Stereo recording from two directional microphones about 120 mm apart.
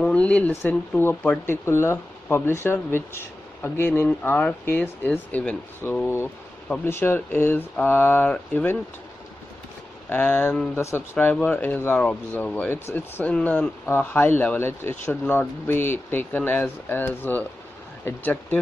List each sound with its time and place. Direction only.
0.0 s a sound: 10° left (ahead or behind)
0.5 s speech: 15° left (ahead or behind)
10.0 s speech: 15° left (ahead or behind)
11.1 s speech: 15° left (ahead or behind)